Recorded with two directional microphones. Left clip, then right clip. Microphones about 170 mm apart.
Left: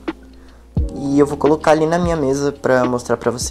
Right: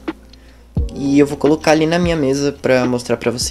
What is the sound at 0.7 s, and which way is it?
Speech, 5° right (ahead or behind).